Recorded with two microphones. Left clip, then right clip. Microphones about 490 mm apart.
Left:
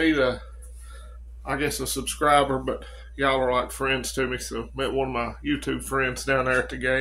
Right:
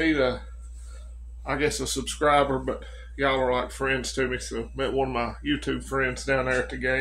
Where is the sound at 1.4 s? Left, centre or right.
Left.